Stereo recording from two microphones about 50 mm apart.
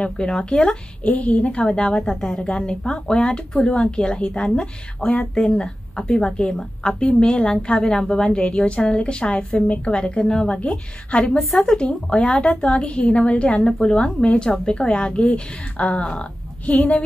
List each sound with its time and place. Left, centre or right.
0.0 s a woman's voice: left
1.7 s a woman's voice: centre
11.3 s a woman's voice: centre
11.7 s a woman's voice: centre